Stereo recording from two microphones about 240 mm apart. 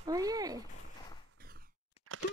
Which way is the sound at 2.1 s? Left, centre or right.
Right.